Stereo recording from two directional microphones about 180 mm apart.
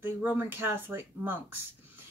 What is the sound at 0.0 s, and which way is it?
A woman's voice, 10° right (ahead or behind).